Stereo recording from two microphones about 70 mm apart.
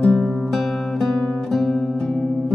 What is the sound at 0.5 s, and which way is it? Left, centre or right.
Music, centre.